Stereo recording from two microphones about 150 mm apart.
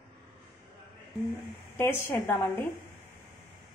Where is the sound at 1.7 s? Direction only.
15° left (ahead or behind).